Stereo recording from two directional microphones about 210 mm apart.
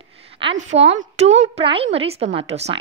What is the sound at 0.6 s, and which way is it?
A woman's voice, 30° right (ahead or behind).